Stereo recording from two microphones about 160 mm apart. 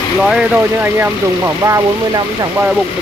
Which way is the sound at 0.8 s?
15° right (ahead or behind).